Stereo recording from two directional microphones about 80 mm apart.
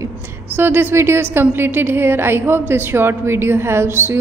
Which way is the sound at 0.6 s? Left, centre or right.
Right.